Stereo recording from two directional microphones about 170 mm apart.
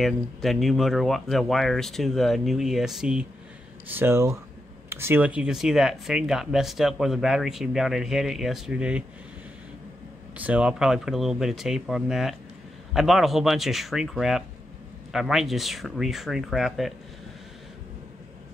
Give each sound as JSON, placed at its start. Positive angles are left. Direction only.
{"t": 0.0, "sound": "speech", "side_deg": 0}
{"t": 10.3, "sound": "speech", "side_deg": -10}